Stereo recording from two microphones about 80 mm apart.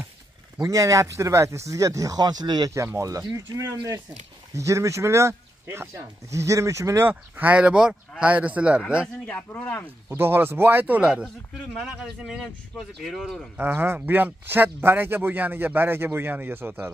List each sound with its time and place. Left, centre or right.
0.6 s speech: right
2.7 s speech: right
7.1 s speech: right
9.3 s speech: centre
9.8 s speech: right
11.0 s speech: centre
13.6 s speech: right